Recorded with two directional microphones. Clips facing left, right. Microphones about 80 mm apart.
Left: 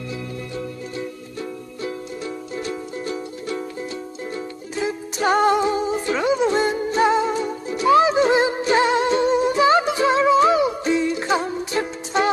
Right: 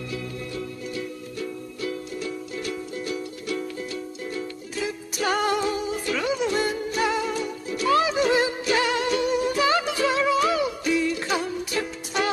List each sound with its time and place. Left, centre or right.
0.9 s music: left